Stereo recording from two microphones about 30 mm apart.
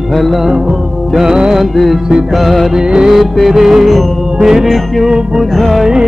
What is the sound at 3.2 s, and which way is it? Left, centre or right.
Music, centre.